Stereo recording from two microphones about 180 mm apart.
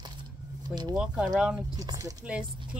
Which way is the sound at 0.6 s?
25° right (ahead or behind).